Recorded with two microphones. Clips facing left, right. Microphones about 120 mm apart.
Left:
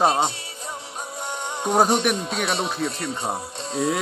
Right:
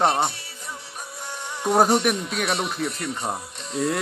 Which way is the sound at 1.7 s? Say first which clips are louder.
Even; centre (ahead or behind).